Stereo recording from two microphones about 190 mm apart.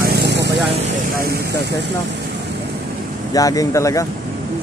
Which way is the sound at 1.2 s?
55° right (ahead or behind).